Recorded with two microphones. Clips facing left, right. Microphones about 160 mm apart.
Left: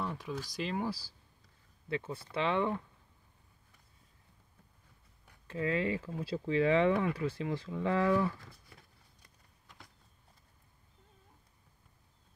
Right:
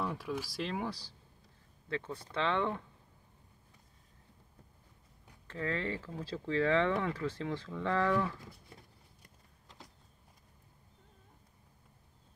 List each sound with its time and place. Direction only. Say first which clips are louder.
0.0 s speech: right 1 dB; 5° right (ahead or behind)
5.5 s speech: left 4 dB; 15° left (ahead or behind)
9.2 s a sound: right 3 dB; 30° right (ahead or behind)